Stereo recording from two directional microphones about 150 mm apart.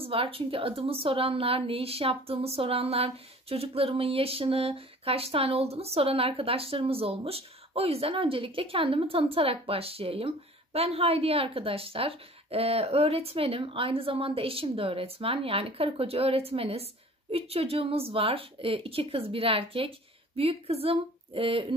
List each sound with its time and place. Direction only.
0.0 s a woman's voice: 40° right (ahead or behind)